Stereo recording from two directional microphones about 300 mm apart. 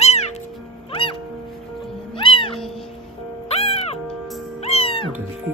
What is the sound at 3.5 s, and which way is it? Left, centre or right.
Music, centre.